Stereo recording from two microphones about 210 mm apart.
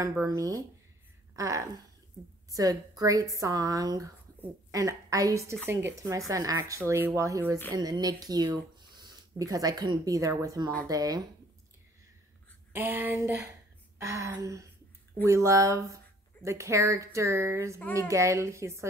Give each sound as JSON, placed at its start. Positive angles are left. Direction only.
{"t": 0.1, "sound": "a woman's voice", "side_deg": -15}
{"t": 12.7, "sound": "a woman's voice", "side_deg": -10}